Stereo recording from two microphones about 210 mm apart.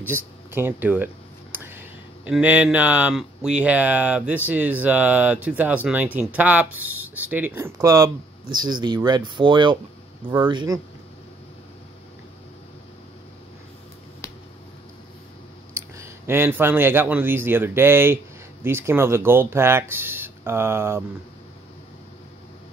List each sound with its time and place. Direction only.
0.0 s speech: 10° right (ahead or behind)
15.7 s speech: 10° right (ahead or behind)